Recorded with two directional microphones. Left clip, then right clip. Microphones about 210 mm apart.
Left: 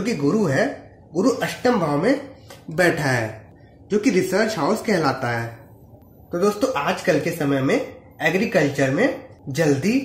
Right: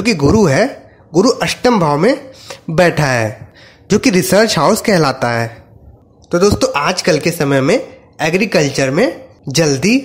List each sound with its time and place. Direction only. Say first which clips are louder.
0.0 s speech: right 9 dB; 40° right (ahead or behind)